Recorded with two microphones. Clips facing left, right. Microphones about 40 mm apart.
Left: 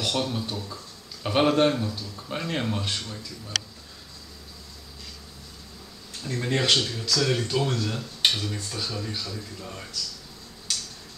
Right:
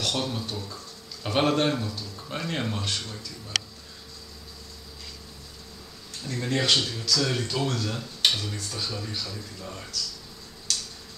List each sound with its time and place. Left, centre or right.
0.2 s speech: centre
6.2 s speech: centre
10.7 s a sound: centre